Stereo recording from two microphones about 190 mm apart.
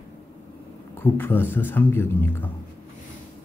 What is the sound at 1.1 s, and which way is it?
Speech, 10° left (ahead or behind).